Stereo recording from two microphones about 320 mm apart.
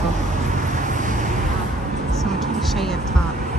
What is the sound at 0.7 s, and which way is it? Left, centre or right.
Vehicle, right.